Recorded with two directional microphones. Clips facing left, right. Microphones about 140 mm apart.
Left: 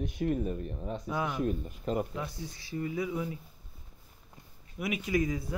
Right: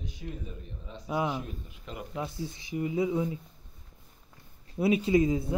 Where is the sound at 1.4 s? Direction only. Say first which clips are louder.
Left 11 dB; 45° left (ahead or behind).